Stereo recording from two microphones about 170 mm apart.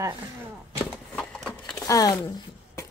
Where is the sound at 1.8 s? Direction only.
20° left (ahead or behind).